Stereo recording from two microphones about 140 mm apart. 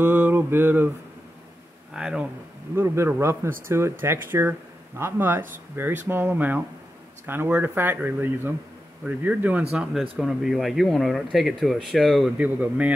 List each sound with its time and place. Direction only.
0.0 s mantra: 15° right (ahead or behind)
2.0 s speech: 5° right (ahead or behind)
2.7 s speech: 15° right (ahead or behind); by 12.3 s centre (ahead or behind)
12.4 s speech: 10° right (ahead or behind)